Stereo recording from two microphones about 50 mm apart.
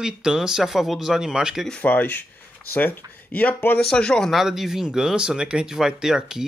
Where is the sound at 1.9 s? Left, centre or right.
Left.